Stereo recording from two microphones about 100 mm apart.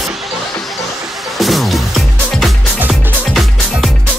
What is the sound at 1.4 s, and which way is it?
Music, centre (ahead or behind).